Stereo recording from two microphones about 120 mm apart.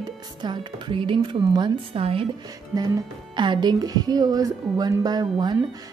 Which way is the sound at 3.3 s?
40° right (ahead or behind).